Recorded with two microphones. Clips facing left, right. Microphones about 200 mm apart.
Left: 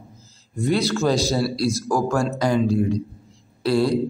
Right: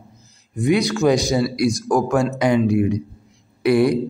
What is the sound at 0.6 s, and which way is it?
A man's voice, 15° right (ahead or behind).